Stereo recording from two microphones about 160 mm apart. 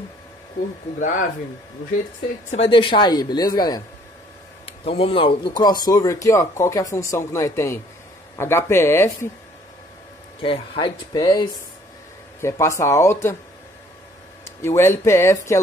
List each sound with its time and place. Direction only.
2.5 s speech: 35° left (ahead or behind)
4.6 s speech: 35° left (ahead or behind); by 9.3 s 15° left (ahead or behind)
10.4 s speech: 35° left (ahead or behind); by 13.4 s 15° left (ahead or behind)
14.6 s speech: 15° left (ahead or behind)